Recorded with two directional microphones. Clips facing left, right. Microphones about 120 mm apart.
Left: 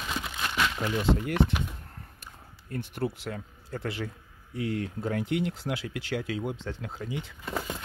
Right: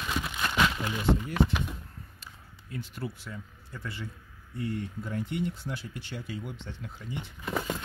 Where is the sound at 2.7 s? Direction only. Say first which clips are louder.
Left 6 dB; 60° left (ahead or behind).